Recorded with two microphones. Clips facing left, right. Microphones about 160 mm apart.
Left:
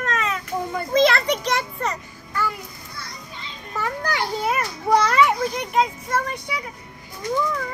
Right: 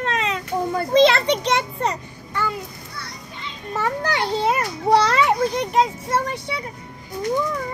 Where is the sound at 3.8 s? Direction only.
25° right (ahead or behind).